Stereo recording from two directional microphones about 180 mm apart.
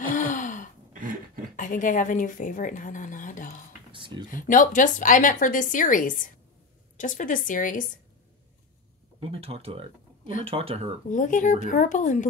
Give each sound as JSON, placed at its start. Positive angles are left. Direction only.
{"t": 0.1, "sound": "gasp", "side_deg": 50}
{"t": 1.6, "sound": "a woman's voice", "side_deg": 45}
{"t": 3.9, "sound": "a sound", "side_deg": -25}
{"t": 4.3, "sound": "a woman's voice", "side_deg": 50}
{"t": 9.3, "sound": "speech", "side_deg": -30}
{"t": 11.1, "sound": "a woman's voice", "side_deg": 45}